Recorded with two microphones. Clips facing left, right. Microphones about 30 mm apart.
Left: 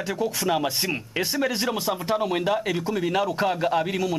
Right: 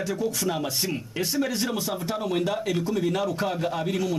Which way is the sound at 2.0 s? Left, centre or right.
Left.